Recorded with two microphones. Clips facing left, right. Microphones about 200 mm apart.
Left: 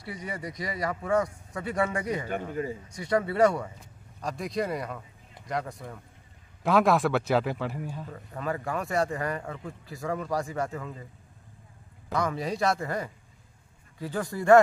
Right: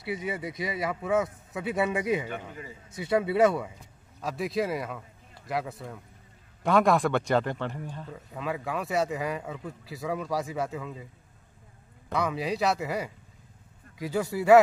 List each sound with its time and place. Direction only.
0.0 s a man's voice: 5° right (ahead or behind)
2.2 s a man's voice: 45° left (ahead or behind)
2.9 s a man's voice: 5° right (ahead or behind)
12.1 s a man's voice: centre (ahead or behind)